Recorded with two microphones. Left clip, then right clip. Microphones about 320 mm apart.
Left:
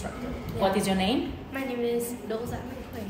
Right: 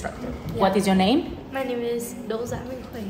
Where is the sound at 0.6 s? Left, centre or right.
Right.